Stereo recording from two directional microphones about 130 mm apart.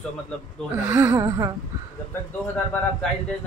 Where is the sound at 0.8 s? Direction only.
15° right (ahead or behind).